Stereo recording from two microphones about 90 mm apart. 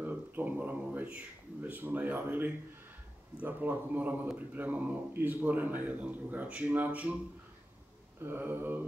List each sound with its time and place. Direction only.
0.0 s a sound: 20° right (ahead or behind)
0.7 s speech: 15° right (ahead or behind)
8.2 s speech: 20° right (ahead or behind)